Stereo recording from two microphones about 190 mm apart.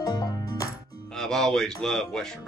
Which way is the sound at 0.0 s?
20° left (ahead or behind).